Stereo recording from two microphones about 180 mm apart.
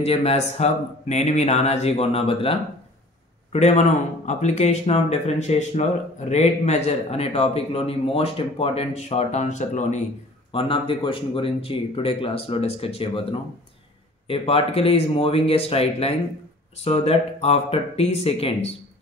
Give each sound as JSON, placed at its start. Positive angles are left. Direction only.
{"t": 0.0, "sound": "speech", "side_deg": 35}
{"t": 3.5, "sound": "speech", "side_deg": 35}
{"t": 10.5, "sound": "speech", "side_deg": 30}